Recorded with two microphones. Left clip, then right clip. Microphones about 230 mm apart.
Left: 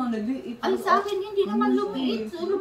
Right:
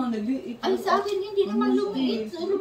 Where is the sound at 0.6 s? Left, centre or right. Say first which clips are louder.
Left 1 dB; centre.